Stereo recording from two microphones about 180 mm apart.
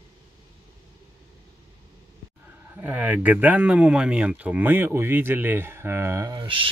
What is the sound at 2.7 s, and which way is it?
Speech, 10° right (ahead or behind).